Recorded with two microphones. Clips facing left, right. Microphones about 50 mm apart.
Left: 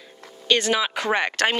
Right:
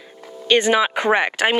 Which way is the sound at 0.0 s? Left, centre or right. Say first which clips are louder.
Right 7 dB; centre.